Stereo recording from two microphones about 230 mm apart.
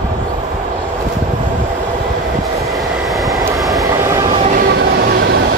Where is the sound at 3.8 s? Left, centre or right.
Centre.